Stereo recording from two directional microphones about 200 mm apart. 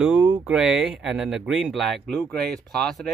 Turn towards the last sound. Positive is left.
turn(degrees=0)  # may be behind; listen again after turning